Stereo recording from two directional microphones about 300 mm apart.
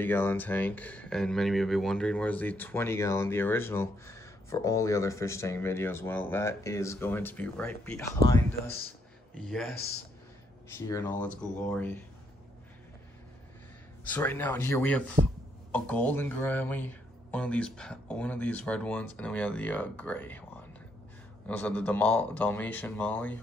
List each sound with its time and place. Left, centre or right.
0.0 s speech: centre
9.4 s speech: centre
10.9 s speech: centre
14.0 s speech: centre
21.5 s speech: centre